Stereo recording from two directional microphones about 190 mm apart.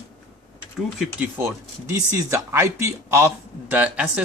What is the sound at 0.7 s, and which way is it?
Speech, centre (ahead or behind).